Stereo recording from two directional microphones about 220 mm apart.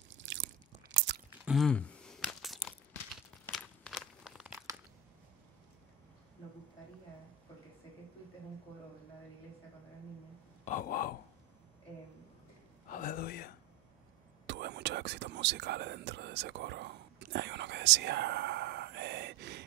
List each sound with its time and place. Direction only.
0.1 s biting: 55° right (ahead or behind)
1.4 s a sound: centre (ahead or behind)
10.6 s grunt: 35° left (ahead or behind)
12.9 s gasp: 40° left (ahead or behind)
14.4 s whispering: 50° right (ahead or behind)